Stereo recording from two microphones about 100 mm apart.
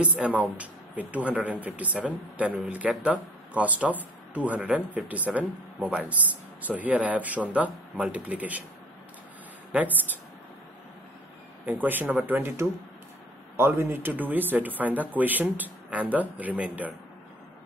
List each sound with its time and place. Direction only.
0.0 s speech: 15° right (ahead or behind)
11.6 s speech: 15° right (ahead or behind)